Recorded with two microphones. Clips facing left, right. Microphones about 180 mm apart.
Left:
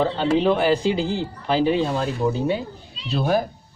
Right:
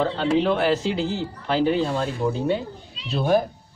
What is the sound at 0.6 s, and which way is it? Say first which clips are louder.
Speech: left 2 dB; centre (ahead or behind).